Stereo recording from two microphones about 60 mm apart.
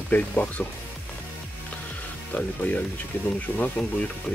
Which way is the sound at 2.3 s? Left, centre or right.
Left.